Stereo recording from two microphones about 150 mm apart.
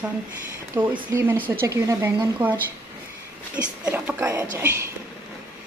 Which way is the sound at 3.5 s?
10° right (ahead or behind).